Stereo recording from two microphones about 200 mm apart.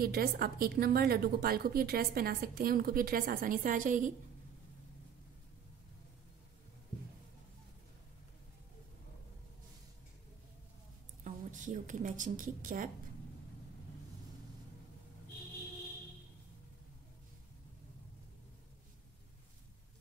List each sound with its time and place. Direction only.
0.0 s a woman's voice: 50° right (ahead or behind)
11.2 s a woman's voice: 40° right (ahead or behind)